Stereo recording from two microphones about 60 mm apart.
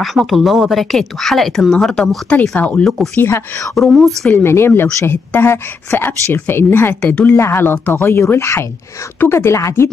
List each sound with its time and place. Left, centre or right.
0.0 s speech: centre
2.3 s speech: left
2.8 s speech: centre
3.2 s speech: left
3.7 s speech: centre
4.3 s speech: left